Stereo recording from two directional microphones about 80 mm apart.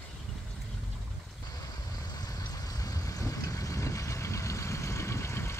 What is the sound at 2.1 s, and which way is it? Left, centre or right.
Vehicle, left.